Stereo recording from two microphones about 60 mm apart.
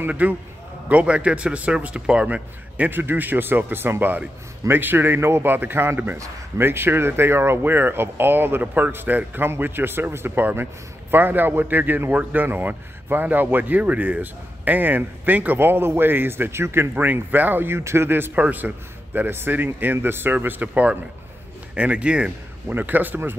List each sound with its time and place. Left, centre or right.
0.1 s a man's voice: right
2.9 s speech: right
16.9 s speech: right
18.3 s a man's voice: right
22.7 s speech: right